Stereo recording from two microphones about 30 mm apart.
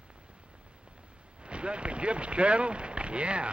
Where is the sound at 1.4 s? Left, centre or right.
Right.